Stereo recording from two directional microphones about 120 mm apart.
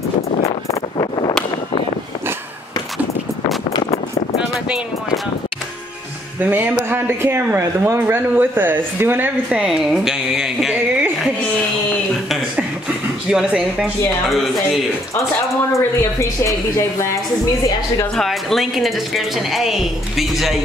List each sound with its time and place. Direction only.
0.4 s vehicle: 50° left (ahead or behind)
6.4 s speech: 15° right (ahead or behind)
13.3 s a woman's voice: 5° right (ahead or behind)
15.7 s a woman's voice: 25° left (ahead or behind)
18.1 s a woman's voice: centre (ahead or behind)